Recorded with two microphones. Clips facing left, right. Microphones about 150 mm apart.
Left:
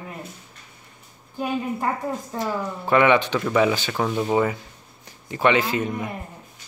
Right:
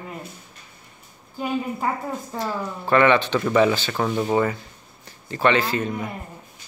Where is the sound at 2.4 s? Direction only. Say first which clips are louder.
Left 1 dB; 15° left (ahead or behind).